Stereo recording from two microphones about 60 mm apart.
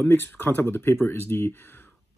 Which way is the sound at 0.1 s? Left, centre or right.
Left.